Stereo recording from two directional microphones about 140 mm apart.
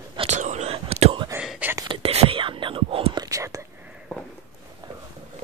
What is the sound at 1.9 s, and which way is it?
Whispering, 45° right (ahead or behind).